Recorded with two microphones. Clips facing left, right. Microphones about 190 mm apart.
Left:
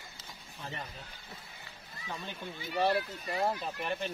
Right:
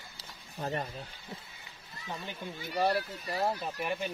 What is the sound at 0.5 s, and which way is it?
Speech, 40° right (ahead or behind).